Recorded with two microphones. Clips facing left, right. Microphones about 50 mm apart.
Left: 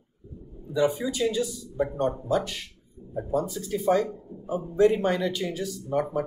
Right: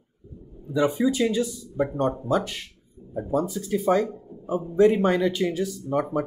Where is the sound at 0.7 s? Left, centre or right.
Right.